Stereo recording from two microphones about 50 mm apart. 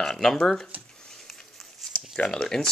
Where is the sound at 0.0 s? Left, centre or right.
Centre.